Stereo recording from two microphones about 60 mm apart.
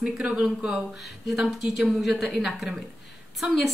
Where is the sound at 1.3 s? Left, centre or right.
Centre.